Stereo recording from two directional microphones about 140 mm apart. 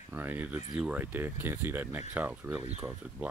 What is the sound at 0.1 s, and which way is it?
Speech, 10° right (ahead or behind).